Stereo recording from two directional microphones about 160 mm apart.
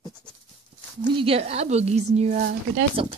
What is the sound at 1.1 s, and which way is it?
A woman's voice, 35° right (ahead or behind).